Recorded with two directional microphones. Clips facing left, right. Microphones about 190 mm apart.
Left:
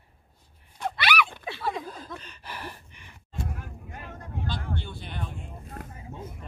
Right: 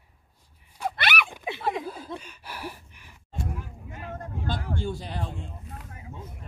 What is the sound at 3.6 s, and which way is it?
Vehicle, 50° left (ahead or behind).